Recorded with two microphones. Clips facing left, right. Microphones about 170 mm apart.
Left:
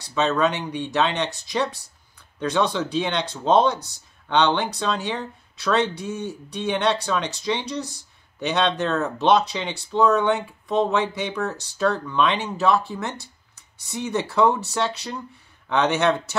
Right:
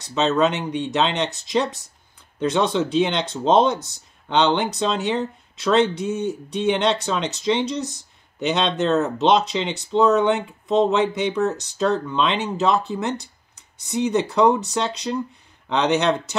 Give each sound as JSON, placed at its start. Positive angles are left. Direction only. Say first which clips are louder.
{"t": 0.0, "sound": "speech", "louder": "right 2 dB", "side_deg": -20}